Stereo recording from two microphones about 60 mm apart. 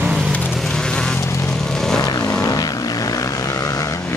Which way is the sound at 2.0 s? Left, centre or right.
Left.